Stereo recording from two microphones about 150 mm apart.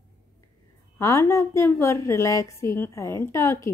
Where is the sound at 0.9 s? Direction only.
20° left (ahead or behind).